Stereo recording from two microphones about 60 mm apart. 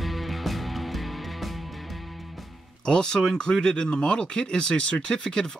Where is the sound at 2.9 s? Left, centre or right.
Centre.